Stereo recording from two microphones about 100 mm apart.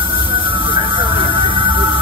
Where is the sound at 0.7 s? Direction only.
55° right (ahead or behind).